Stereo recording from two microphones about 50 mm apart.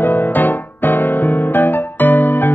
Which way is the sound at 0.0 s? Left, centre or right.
Left.